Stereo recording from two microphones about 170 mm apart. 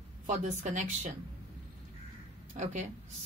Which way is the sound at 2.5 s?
45° right (ahead or behind).